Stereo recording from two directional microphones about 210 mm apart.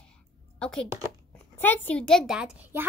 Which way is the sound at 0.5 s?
5° left (ahead or behind).